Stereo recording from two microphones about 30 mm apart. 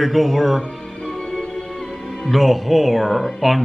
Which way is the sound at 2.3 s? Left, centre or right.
Centre.